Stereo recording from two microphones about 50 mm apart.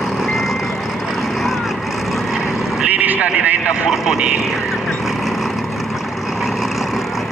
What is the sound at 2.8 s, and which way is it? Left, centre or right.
Vehicle, right.